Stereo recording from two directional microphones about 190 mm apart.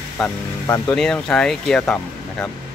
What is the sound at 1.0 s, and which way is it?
Speech, 5° left (ahead or behind).